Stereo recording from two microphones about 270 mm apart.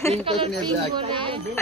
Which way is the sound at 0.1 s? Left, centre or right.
Right.